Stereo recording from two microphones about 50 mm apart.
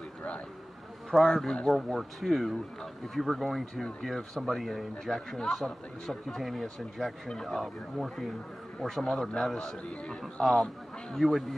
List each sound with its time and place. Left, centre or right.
1.1 s a man's voice: centre
9.6 s a man's voice: centre
10.4 s speech: centre